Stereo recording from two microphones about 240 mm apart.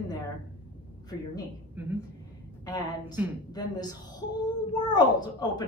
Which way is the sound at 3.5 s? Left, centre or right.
Centre.